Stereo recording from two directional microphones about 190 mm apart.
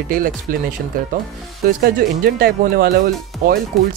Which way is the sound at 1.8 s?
50° right (ahead or behind).